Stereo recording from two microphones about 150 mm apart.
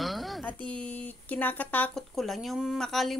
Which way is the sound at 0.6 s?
35° right (ahead or behind).